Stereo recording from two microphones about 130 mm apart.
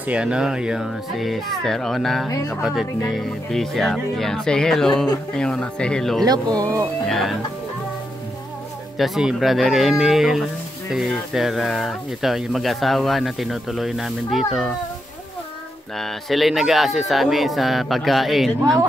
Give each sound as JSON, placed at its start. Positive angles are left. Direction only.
{"t": 0.0, "sound": "speech", "side_deg": -10}
{"t": 6.2, "sound": "speech", "side_deg": -30}
{"t": 7.1, "sound": "speech", "side_deg": 0}
{"t": 8.9, "sound": "speech", "side_deg": 0}
{"t": 16.0, "sound": "speech", "side_deg": 0}